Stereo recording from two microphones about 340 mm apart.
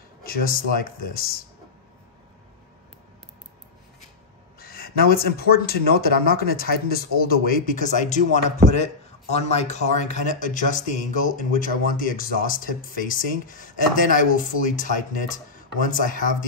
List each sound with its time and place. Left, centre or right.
0.2 s speech: left
4.6 s speech: left